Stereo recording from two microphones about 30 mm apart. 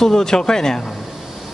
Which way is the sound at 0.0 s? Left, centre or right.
Centre.